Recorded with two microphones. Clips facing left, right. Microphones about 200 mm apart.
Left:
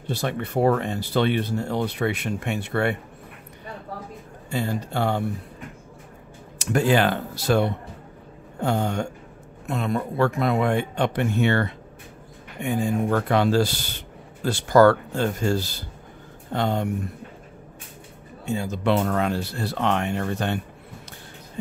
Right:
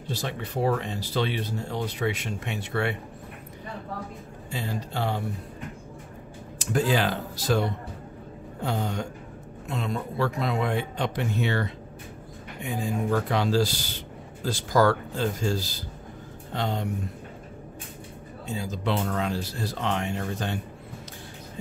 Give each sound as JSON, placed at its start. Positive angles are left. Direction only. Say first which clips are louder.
{"t": 0.1, "sound": "speech", "louder": "left 6 dB", "side_deg": 60}
{"t": 4.5, "sound": "speech", "louder": "left 6 dB", "side_deg": 55}
{"t": 6.6, "sound": "speech", "louder": "left 4 dB", "side_deg": 65}
{"t": 8.5, "sound": "speech", "louder": "left 5 dB", "side_deg": 55}
{"t": 18.5, "sound": "speech", "louder": "left 6 dB", "side_deg": 65}